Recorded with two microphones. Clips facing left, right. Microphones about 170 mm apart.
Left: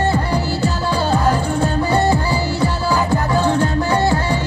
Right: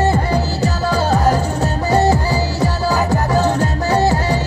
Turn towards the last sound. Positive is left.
turn(degrees=-40)  # may be behind; listen again after turning